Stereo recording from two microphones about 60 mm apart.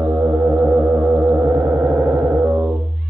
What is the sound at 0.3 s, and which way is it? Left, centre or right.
Music, centre.